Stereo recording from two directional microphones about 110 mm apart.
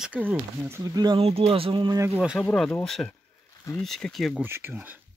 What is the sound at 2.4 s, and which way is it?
Speech, 5° left (ahead or behind).